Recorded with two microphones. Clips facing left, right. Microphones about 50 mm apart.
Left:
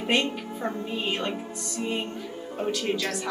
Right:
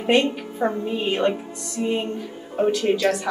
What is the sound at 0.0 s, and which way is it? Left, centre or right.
Speech, centre.